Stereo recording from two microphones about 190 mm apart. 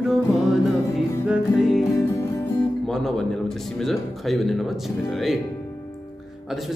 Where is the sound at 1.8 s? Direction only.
15° left (ahead or behind).